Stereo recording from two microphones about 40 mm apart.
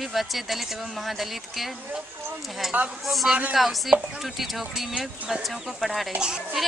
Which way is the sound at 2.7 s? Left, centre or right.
Right.